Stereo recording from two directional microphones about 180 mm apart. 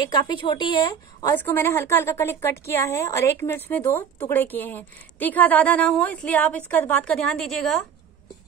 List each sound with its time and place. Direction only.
0.0 s a woman's voice: 25° left (ahead or behind)
1.3 s a woman's voice: 10° left (ahead or behind)